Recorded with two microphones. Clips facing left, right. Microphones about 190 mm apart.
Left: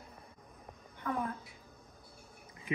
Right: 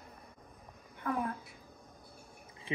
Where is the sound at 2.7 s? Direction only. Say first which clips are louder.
Left 1 dB; 30° right (ahead or behind).